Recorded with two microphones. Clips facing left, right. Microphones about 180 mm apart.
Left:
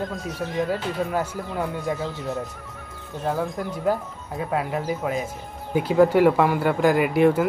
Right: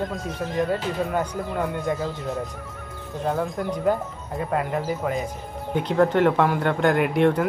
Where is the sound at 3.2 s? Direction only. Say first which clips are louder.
Right 1 dB; centre (ahead or behind).